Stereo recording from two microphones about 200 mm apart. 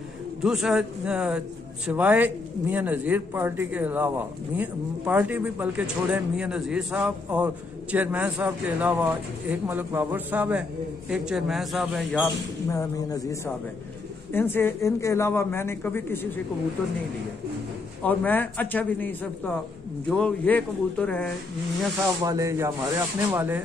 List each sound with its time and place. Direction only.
0.4 s speech: centre (ahead or behind)
12.6 s a man's voice: 15° left (ahead or behind)
18.0 s a man's voice: 10° left (ahead or behind)
22.2 s speech: 15° right (ahead or behind)